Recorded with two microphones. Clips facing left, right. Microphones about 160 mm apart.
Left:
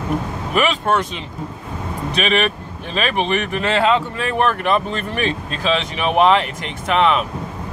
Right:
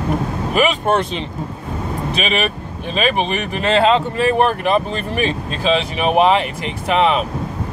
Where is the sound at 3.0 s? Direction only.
30° right (ahead or behind).